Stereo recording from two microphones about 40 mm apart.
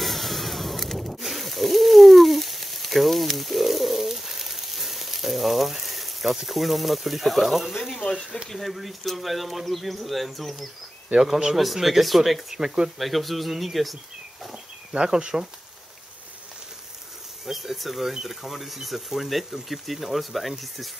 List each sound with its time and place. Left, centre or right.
0.0 s a sound: centre
8.5 s speech: centre
11.1 s speech: centre
11.5 s speech: centre
12.5 s speech: centre
13.0 s speech: centre
14.5 s a sound: centre
17.5 s speech: centre